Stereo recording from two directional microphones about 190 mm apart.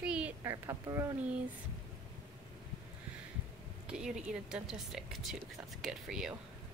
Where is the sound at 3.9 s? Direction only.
5° right (ahead or behind).